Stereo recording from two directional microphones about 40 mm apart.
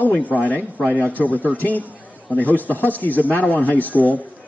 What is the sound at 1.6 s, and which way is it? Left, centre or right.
Speech, left.